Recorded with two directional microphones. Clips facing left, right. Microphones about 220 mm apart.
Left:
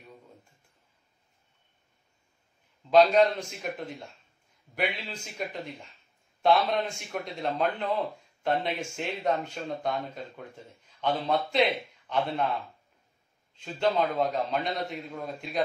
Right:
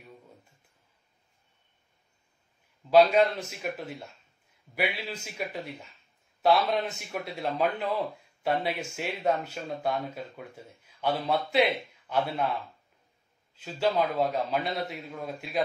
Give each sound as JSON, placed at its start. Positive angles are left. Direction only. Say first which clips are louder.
{"t": 2.9, "sound": "a man's voice", "louder": "even", "side_deg": -5}
{"t": 13.6, "sound": "a man's voice", "louder": "even", "side_deg": -5}